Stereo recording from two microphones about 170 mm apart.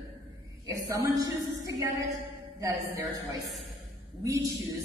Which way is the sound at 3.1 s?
20° right (ahead or behind).